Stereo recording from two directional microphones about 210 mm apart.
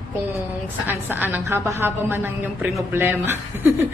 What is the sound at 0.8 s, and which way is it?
A woman's voice, 10° right (ahead or behind).